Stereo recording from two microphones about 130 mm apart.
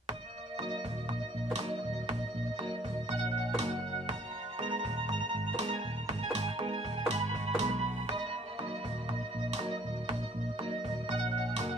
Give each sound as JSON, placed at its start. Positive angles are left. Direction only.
{"t": 1.5, "sound": "music", "side_deg": -60}
{"t": 7.5, "sound": "music", "side_deg": -55}
{"t": 9.6, "sound": "organ", "side_deg": -55}
{"t": 11.1, "sound": "music", "side_deg": -55}